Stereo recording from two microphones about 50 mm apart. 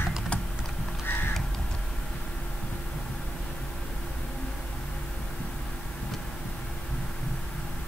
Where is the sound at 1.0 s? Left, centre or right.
Left.